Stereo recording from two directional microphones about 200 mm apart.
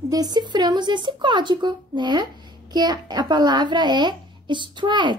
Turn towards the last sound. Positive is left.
turn(degrees=-25)  # may be behind; listen again after turning